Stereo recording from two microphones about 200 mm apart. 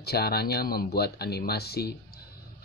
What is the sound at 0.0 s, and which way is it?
Speech, 50° left (ahead or behind).